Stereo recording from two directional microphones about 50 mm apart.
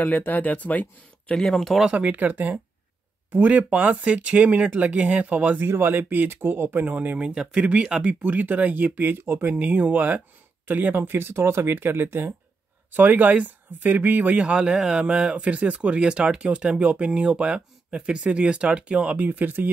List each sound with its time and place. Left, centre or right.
0.0 s speech: left
1.3 s speech: centre
2.0 s speech: right
5.6 s speech: right
7.2 s speech: centre
8.1 s speech: right
9.2 s speech: right
9.5 s speech: right
12.9 s speech: right
14.4 s speech: centre
19.2 s speech: right